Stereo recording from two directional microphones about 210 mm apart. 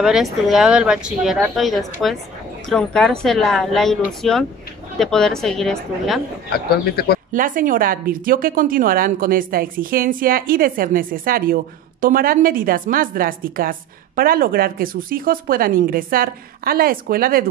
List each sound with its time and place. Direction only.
0.0 s speech: centre (ahead or behind)
6.5 s speech: 50° left (ahead or behind)
7.3 s a woman's voice: 40° right (ahead or behind)